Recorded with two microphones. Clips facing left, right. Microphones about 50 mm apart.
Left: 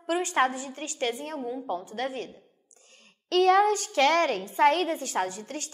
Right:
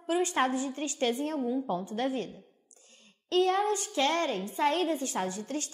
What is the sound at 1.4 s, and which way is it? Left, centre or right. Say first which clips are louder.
Speech: right 3 dB; centre.